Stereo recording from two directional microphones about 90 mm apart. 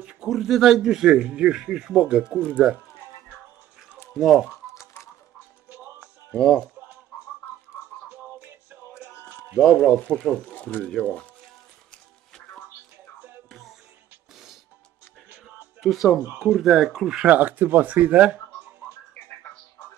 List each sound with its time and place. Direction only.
0.0 s a man's voice: 10° right (ahead or behind)
4.2 s speech: 5° right (ahead or behind)
4.7 s a sound: 35° left (ahead or behind)
5.7 s music: 20° right (ahead or behind)
6.3 s speech: 5° left (ahead or behind)
8.9 s a sound: 10° right (ahead or behind)
9.6 s speech: 10° left (ahead or behind)
13.5 s music: centre (ahead or behind)
15.8 s speech: centre (ahead or behind)
16.2 s speech: 25° right (ahead or behind)
16.4 s speech: centre (ahead or behind)
17.3 s a man's voice: 20° right (ahead or behind)